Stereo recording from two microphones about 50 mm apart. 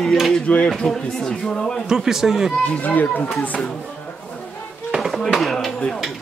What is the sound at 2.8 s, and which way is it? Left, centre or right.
Speech, left.